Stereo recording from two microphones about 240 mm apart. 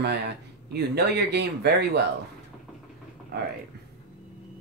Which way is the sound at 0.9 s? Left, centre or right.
Right.